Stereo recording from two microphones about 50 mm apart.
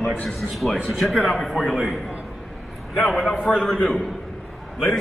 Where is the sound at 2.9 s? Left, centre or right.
Centre.